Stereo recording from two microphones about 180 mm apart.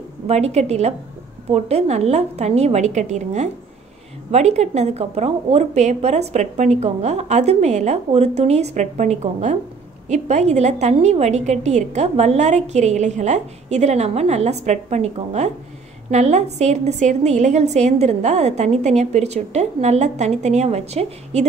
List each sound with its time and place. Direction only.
0.3 s a woman's voice: 35° right (ahead or behind)